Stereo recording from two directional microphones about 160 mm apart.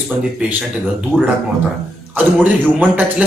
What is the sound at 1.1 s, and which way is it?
Speech, 5° left (ahead or behind).